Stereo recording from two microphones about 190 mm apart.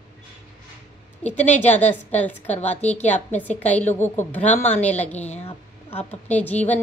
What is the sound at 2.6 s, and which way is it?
Speech, 35° left (ahead or behind).